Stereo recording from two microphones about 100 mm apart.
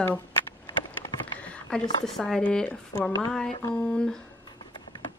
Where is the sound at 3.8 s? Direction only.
5° left (ahead or behind).